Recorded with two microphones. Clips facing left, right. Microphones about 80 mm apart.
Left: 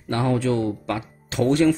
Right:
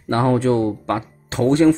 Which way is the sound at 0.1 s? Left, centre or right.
Right.